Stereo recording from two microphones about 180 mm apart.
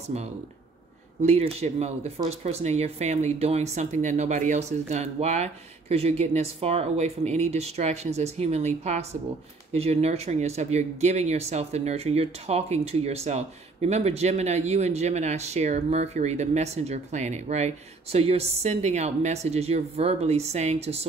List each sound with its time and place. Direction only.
0.1 s speech: 40° right (ahead or behind)